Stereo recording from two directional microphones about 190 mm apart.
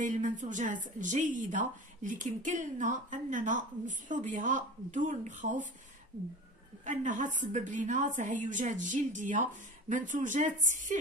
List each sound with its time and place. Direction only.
0.0 s a woman's voice: 40° right (ahead or behind)
6.8 s a woman's voice: 40° right (ahead or behind)